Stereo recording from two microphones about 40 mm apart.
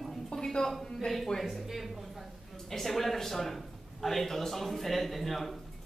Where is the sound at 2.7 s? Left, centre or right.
Centre.